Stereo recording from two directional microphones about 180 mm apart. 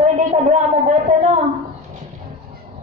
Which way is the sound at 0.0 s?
40° right (ahead or behind).